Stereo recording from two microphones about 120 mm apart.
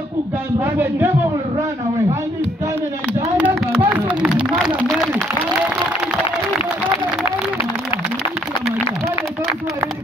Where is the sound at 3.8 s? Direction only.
10° right (ahead or behind).